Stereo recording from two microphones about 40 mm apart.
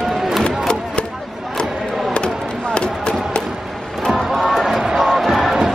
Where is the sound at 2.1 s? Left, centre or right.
Left.